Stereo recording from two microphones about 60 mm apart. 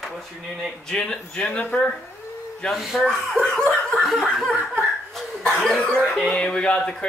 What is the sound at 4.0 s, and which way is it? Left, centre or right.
Speech, centre.